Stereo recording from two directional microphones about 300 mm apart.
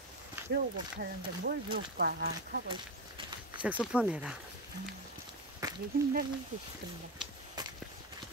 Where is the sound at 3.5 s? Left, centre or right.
Centre.